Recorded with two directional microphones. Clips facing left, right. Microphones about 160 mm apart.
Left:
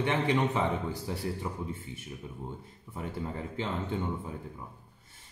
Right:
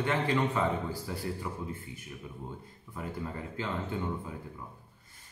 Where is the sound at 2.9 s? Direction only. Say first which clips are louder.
Left 1 dB; 20° left (ahead or behind).